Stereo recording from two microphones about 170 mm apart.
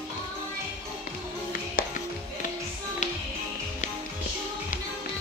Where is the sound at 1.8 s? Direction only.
55° left (ahead or behind).